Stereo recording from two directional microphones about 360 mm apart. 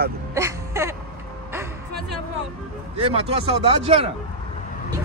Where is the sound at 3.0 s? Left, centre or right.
Centre.